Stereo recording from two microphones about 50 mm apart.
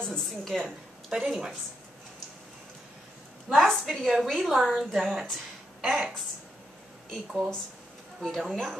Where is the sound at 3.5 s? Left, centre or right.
Centre.